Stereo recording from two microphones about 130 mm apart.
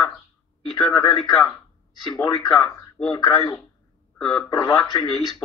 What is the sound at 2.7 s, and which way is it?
Speech, 25° left (ahead or behind).